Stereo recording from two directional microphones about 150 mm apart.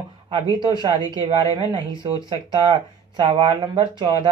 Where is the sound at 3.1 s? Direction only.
30° right (ahead or behind).